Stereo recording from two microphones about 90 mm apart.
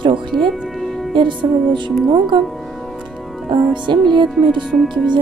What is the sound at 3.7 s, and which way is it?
Speech, 60° right (ahead or behind).